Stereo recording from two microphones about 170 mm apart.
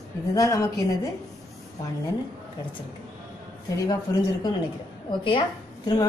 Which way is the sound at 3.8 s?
25° left (ahead or behind).